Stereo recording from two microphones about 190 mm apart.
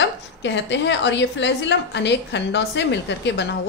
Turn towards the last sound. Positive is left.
turn(degrees=70)  # may be behind; listen again after turning